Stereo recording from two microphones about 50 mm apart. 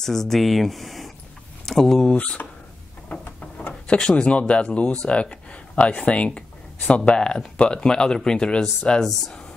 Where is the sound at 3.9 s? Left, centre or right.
Centre.